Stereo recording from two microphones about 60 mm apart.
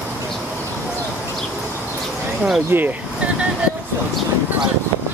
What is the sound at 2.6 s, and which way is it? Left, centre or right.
Speech, right.